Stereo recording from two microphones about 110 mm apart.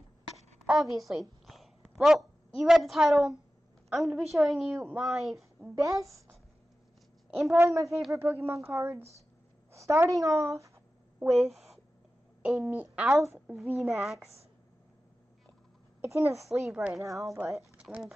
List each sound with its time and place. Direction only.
0.7 s a woman's voice: centre (ahead or behind)
5.6 s speech: 30° right (ahead or behind)
7.5 s speech: 30° right (ahead or behind)
9.7 s a sound: 30° right (ahead or behind)
10.2 s speech: 30° right (ahead or behind)
11.3 s a woman's voice: centre (ahead or behind)
16.1 s speech: 25° right (ahead or behind)
16.4 s a woman's voice: 5° right (ahead or behind)
17.0 s speech: 30° right (ahead or behind)
17.7 s speech: 10° right (ahead or behind)